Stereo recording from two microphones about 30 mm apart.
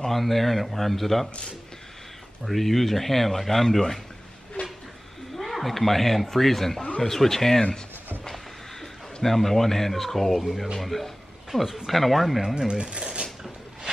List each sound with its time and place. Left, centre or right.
0.0 s speech: centre
2.4 s speech: centre
4.6 s a sound: left
5.4 s speech: centre
9.2 s speech: centre
12.5 s speech: right
12.9 s speech: right